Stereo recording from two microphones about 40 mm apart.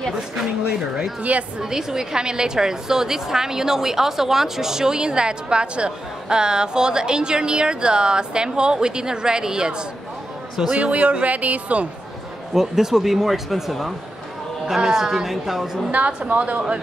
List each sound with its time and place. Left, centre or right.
1.6 s a woman's voice: centre
10.7 s speech: right
12.5 s speech: centre
14.7 s speech: centre
16.3 s speech: right